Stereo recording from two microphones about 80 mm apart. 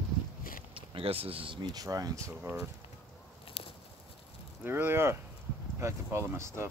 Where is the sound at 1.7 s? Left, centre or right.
Right.